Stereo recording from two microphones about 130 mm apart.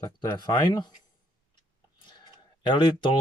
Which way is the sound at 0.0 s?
30° left (ahead or behind).